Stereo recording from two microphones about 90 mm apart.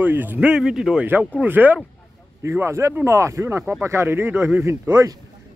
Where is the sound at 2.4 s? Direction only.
30° right (ahead or behind).